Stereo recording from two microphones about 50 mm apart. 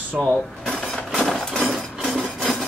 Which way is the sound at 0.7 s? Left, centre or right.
Centre.